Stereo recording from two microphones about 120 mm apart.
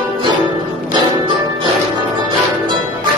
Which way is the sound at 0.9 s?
40° right (ahead or behind).